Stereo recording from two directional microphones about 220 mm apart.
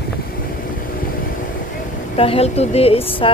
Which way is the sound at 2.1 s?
25° left (ahead or behind).